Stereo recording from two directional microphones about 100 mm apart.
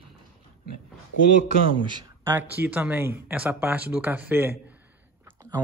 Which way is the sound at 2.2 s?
20° right (ahead or behind).